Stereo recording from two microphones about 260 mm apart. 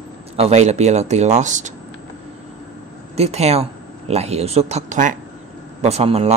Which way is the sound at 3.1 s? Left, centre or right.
Right.